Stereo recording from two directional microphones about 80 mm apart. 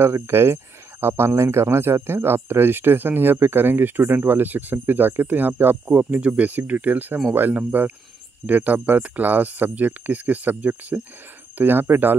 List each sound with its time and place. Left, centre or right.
0.0 s speech: right